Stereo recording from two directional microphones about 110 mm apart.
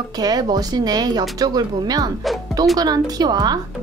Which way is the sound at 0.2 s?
35° right (ahead or behind).